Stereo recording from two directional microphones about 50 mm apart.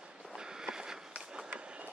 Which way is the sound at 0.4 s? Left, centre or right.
Centre.